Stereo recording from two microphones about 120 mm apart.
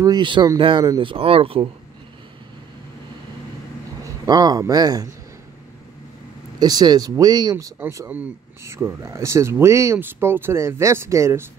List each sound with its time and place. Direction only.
0.0 s speech: 40° right (ahead or behind)
4.0 s speech: 35° right (ahead or behind)
6.6 s speech: 35° right (ahead or behind)
8.1 s speech: 15° right (ahead or behind)